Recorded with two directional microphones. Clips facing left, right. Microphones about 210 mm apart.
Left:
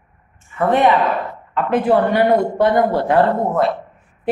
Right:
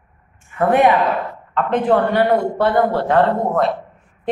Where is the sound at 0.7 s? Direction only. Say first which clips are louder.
Right 1 dB; 10° right (ahead or behind).